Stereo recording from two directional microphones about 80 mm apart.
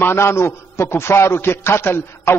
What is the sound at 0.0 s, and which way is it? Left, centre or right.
A man's voice, left.